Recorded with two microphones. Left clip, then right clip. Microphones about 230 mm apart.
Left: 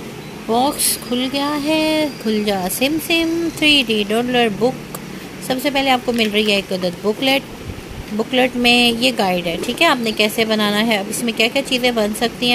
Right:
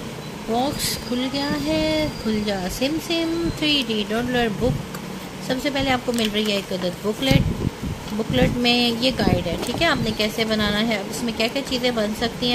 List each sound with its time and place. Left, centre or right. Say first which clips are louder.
0.6 s speech: left 6 dB; centre
5.5 s speech: left 6 dB; centre